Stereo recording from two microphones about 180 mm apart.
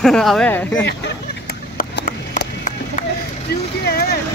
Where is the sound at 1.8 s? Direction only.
45° left (ahead or behind).